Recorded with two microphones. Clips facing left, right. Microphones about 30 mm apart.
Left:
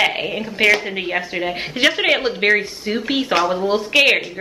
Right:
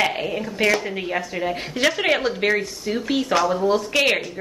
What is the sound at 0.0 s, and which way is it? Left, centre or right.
A woman's voice, left.